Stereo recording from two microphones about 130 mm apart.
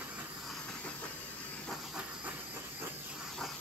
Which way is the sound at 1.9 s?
5° right (ahead or behind).